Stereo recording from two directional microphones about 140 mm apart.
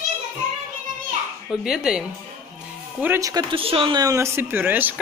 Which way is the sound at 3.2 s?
25° right (ahead or behind).